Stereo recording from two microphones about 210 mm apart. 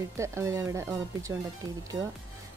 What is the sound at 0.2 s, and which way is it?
A woman's voice, 15° right (ahead or behind).